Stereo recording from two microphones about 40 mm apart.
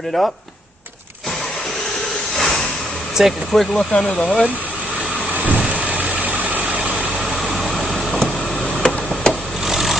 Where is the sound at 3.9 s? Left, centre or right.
Left.